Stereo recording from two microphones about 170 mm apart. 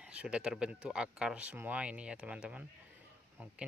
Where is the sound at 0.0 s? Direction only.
5° right (ahead or behind).